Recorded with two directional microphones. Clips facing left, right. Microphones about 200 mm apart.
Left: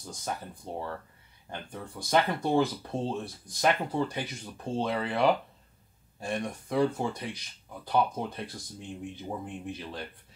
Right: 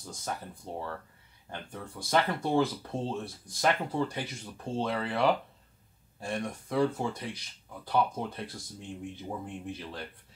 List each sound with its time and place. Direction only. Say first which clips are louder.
0.1 s speech: left 1 dB; 15° left (ahead or behind)